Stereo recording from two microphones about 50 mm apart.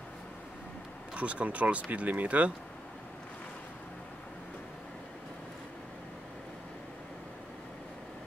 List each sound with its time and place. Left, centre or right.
1.1 s speech: right